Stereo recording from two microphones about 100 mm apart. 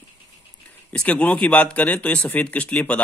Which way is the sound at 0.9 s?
15° left (ahead or behind).